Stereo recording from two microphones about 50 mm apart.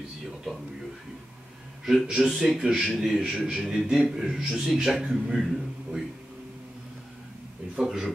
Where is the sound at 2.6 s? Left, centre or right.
Right.